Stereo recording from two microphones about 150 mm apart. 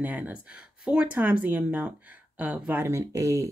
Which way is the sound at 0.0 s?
10° right (ahead or behind).